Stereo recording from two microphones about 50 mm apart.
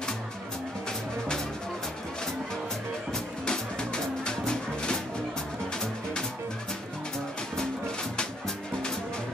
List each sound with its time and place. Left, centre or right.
3.1 s music: centre